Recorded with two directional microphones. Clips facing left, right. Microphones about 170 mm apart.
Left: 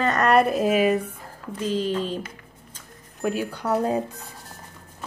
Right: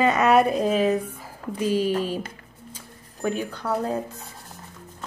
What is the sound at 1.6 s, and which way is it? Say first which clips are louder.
Speech: right 3 dB; 10° right (ahead or behind).